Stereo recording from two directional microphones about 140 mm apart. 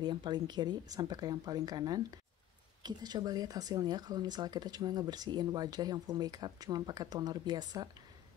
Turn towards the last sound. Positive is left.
turn(degrees=-30)  # may be behind; listen again after turning